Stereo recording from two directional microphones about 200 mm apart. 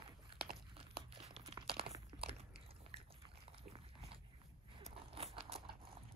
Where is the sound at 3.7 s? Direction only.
30° right (ahead or behind).